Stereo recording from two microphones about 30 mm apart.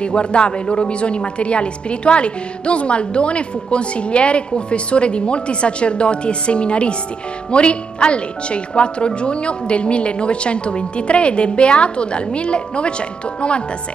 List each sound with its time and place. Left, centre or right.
0.0 s a woman's voice: left